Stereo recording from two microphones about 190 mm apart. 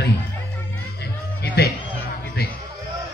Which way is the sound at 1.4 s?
60° left (ahead or behind).